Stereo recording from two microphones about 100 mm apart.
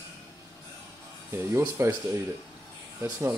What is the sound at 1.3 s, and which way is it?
Speech, 25° right (ahead or behind).